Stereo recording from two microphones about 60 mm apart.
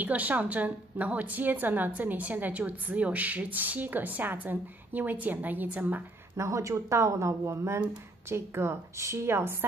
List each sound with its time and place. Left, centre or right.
0.0 s a woman's voice: right
6.3 s a woman's voice: right